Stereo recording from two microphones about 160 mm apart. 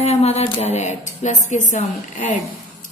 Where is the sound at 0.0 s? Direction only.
40° left (ahead or behind).